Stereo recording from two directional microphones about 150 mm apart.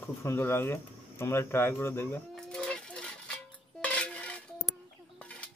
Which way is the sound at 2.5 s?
5° left (ahead or behind).